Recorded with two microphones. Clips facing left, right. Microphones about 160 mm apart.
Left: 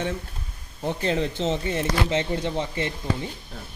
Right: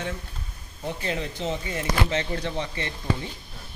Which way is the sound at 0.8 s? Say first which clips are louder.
Left 5 dB; 30° left (ahead or behind).